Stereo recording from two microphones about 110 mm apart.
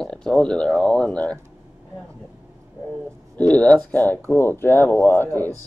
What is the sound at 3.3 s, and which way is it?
Speech, 10° left (ahead or behind).